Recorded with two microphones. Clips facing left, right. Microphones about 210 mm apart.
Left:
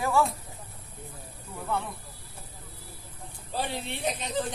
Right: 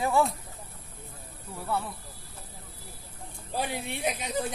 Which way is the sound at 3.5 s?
10° right (ahead or behind).